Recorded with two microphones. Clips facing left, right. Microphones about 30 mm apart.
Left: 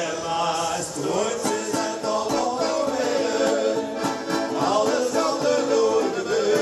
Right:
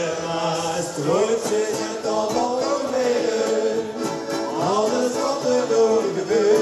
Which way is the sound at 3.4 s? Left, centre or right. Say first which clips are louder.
Even; centre.